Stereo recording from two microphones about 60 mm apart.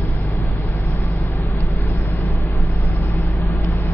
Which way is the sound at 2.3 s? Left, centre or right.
Left.